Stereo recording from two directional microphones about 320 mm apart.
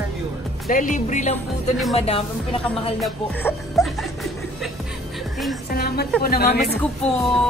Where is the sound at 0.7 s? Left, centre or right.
Left.